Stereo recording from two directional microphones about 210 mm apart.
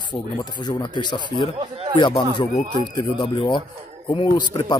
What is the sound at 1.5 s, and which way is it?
Speech, 25° right (ahead or behind).